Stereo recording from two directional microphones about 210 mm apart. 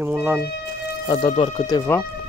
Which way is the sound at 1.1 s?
25° left (ahead or behind).